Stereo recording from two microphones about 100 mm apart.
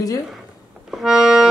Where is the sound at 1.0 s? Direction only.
5° right (ahead or behind).